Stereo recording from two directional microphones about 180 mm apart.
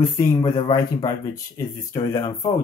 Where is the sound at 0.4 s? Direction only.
25° left (ahead or behind).